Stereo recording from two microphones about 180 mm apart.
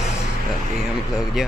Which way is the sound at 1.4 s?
Centre (ahead or behind).